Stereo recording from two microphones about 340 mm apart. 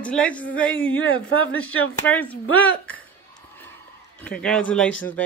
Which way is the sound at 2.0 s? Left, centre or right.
Centre.